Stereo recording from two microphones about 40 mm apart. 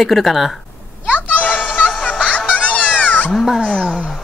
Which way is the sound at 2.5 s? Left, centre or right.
Left.